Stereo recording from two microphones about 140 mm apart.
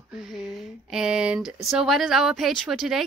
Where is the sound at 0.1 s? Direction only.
5° right (ahead or behind).